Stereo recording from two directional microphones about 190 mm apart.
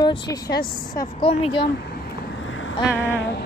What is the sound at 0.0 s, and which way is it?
A woman's voice, 20° left (ahead or behind).